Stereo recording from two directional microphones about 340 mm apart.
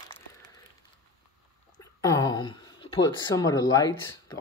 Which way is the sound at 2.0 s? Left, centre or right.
Centre.